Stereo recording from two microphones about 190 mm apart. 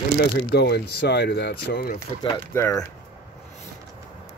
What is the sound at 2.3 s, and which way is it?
Speech, 15° left (ahead or behind).